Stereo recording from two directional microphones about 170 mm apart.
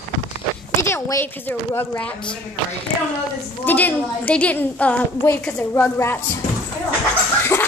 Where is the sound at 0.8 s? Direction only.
15° left (ahead or behind).